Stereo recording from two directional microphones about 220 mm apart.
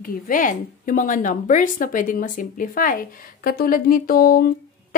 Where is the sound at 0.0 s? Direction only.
35° left (ahead or behind).